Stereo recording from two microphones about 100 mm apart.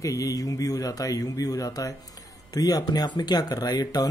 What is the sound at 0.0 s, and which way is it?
Speech, 35° left (ahead or behind).